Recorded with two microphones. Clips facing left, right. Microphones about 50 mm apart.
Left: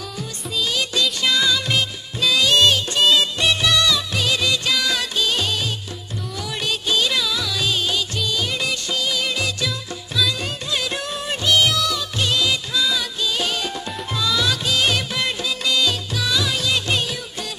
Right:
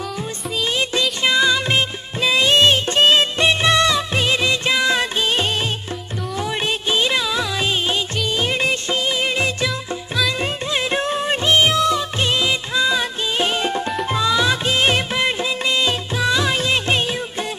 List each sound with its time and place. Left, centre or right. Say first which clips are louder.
0.6 s music: right 1 dB; right
1.2 s music of bollywood: right 5 dB; right
6.3 s music: right 4 dB; right
10.4 s music of bollywood: right 4 dB; right
14.0 s music: right 3 dB; right